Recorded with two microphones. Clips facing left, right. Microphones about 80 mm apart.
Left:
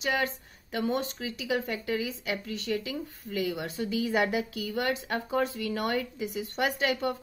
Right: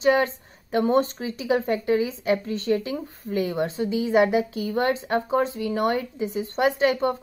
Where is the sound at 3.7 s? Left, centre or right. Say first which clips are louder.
Right 7 dB; right.